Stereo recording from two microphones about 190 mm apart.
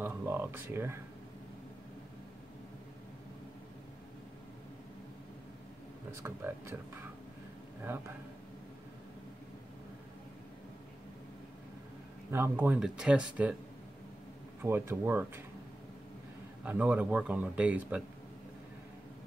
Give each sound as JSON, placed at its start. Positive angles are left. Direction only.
{"t": 0.0, "sound": "a sound", "side_deg": -10}
{"t": 6.2, "sound": "speech", "side_deg": -10}
{"t": 12.3, "sound": "speech", "side_deg": -10}
{"t": 14.6, "sound": "speech", "side_deg": -15}
{"t": 16.6, "sound": "speech", "side_deg": -10}